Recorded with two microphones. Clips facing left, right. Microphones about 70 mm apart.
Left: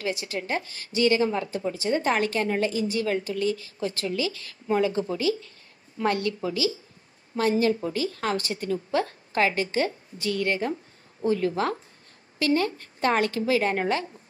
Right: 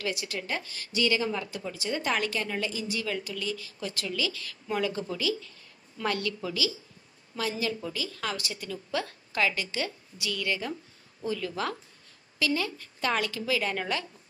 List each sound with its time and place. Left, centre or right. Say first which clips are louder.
0.0 s a woman's voice: left 3 dB; left